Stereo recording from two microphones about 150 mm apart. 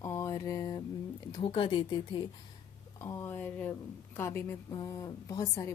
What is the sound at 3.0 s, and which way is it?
A woman's voice, 15° left (ahead or behind).